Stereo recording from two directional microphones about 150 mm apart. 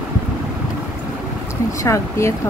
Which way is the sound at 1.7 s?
20° left (ahead or behind).